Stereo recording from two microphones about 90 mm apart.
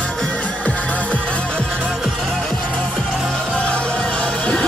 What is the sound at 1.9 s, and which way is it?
Music, centre (ahead or behind).